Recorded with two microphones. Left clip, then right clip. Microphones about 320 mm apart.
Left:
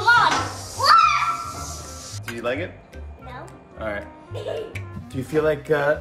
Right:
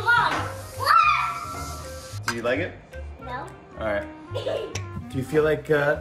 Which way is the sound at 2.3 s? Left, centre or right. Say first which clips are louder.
Even; centre.